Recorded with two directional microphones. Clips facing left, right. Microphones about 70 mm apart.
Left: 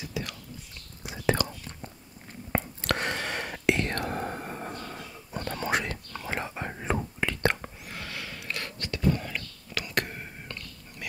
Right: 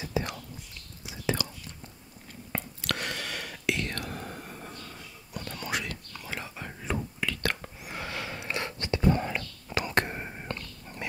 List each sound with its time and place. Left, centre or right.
0.0 s whispering: right
1.0 s whispering: left
2.5 s whispering: left
5.3 s whispering: left
7.8 s whispering: centre